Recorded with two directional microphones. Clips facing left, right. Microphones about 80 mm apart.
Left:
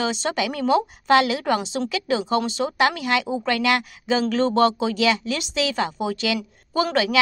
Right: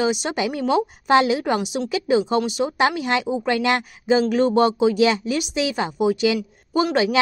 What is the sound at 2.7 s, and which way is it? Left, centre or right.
Speech, right.